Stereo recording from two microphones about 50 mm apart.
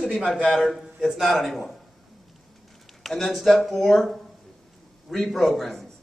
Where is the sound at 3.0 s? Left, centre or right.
Centre.